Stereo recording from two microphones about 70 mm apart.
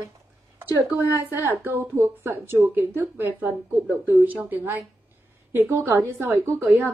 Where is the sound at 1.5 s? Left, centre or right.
Right.